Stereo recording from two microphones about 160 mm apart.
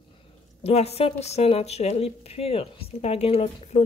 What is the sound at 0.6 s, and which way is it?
A woman's voice, 40° left (ahead or behind).